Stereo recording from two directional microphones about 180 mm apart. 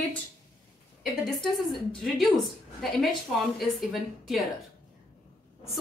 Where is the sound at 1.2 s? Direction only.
Centre (ahead or behind).